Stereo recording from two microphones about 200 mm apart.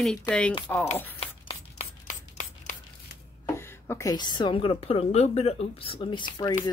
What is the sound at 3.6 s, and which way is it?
A woman's voice, 10° left (ahead or behind).